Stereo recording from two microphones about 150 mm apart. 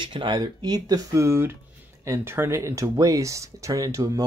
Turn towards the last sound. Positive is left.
turn(degrees=-25)  # may be behind; listen again after turning